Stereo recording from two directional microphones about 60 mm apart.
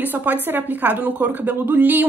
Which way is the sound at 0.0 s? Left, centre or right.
Right.